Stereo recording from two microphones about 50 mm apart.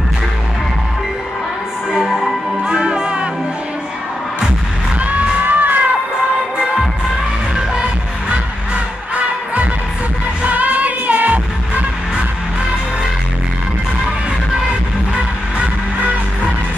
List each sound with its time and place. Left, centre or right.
1.9 s music: centre
5.0 s music: right
10.4 s music: right
15.6 s music: right